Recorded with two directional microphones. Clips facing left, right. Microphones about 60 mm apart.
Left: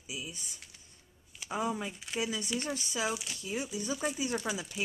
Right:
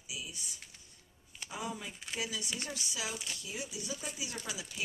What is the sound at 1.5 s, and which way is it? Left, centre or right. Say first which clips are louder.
Speech: left 7 dB; left.